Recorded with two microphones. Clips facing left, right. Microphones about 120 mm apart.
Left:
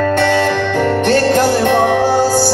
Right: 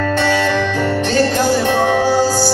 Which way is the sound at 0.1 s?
55° left (ahead or behind).